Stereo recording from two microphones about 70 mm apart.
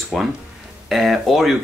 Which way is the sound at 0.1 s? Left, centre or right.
Centre.